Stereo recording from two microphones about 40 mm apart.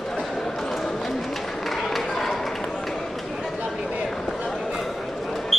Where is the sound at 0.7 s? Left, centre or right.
Centre.